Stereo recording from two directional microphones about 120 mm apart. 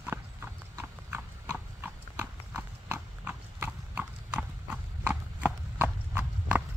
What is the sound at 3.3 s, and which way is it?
Horse, 10° right (ahead or behind).